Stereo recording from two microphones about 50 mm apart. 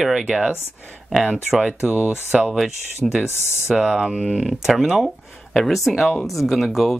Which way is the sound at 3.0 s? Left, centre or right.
Centre.